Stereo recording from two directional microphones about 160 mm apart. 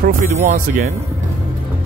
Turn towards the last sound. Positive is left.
turn(degrees=-65)  # may be behind; listen again after turning